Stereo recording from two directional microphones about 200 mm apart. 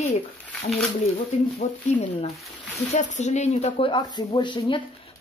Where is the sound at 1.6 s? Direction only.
35° left (ahead or behind).